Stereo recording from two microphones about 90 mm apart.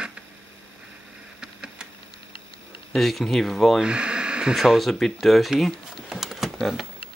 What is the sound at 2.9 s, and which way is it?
Speech, centre (ahead or behind).